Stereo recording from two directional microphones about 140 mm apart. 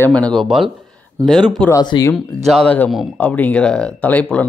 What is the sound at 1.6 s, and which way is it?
Speech, 30° left (ahead or behind).